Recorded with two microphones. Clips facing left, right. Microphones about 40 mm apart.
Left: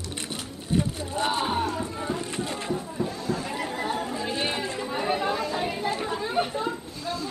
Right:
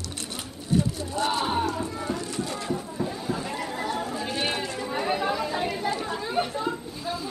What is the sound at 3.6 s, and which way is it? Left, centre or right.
Chatter, centre.